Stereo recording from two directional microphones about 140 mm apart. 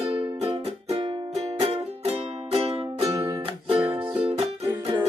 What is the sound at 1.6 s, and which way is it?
Music, 50° right (ahead or behind).